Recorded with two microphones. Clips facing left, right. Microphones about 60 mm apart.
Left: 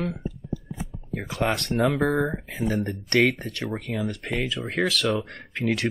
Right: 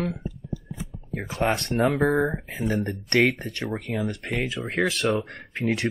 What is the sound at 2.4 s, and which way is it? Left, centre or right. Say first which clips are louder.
Speech: left 1 dB; right.